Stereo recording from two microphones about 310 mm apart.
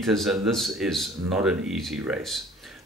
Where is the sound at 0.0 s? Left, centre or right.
Centre.